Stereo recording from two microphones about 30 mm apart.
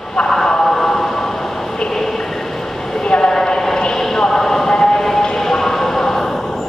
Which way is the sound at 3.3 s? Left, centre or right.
Centre.